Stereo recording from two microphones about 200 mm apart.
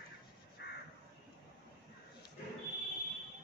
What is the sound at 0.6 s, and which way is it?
Crow, 55° left (ahead or behind).